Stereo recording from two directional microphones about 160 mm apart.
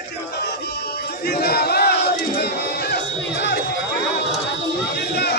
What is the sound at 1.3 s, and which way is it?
Battle cry, 75° left (ahead or behind).